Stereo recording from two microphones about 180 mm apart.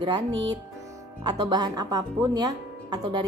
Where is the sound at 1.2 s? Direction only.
20° right (ahead or behind).